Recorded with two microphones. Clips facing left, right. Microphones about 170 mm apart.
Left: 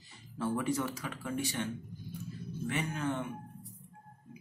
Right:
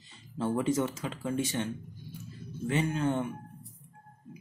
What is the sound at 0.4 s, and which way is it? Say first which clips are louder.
Speech: right 4 dB; 20° right (ahead or behind).